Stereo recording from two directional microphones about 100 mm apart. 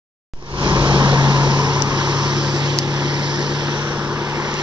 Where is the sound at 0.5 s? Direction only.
55° right (ahead or behind).